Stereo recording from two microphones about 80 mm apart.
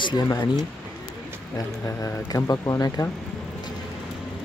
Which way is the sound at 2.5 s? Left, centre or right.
Left.